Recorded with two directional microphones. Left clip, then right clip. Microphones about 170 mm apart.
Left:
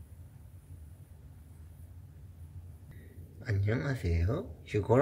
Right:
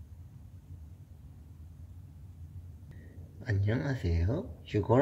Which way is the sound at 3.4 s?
10° left (ahead or behind).